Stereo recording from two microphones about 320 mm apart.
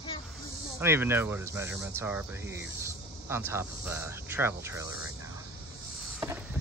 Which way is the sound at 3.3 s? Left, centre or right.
Centre.